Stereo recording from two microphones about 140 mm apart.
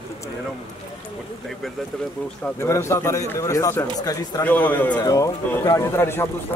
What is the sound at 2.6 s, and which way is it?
A man's voice, 20° left (ahead or behind).